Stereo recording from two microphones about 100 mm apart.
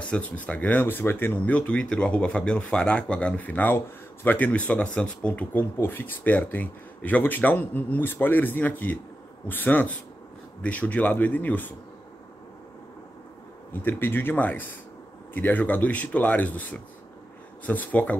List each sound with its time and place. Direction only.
0.0 s speech: 10° left (ahead or behind)
13.7 s speech: 20° left (ahead or behind)